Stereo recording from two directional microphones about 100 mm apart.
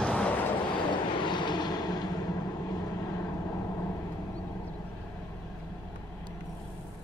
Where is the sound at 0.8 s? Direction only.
50° left (ahead or behind); by 4.0 s 30° left (ahead or behind).